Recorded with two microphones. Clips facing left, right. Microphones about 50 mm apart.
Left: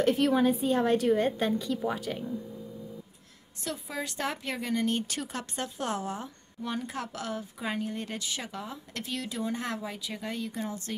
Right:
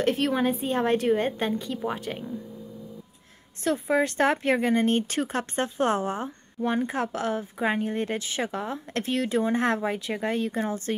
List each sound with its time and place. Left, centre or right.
0.0 s speech: right
3.6 s speech: right